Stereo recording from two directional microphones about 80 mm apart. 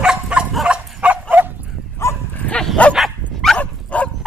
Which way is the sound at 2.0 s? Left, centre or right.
Left.